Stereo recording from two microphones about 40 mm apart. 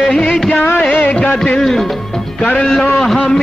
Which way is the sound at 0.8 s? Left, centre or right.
Left.